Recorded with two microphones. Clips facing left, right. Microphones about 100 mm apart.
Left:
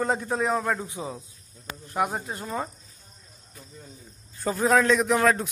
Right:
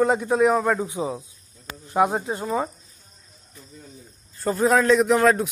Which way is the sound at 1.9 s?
20° right (ahead or behind).